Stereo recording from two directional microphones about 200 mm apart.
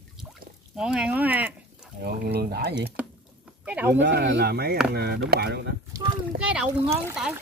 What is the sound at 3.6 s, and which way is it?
Speech, 10° right (ahead or behind).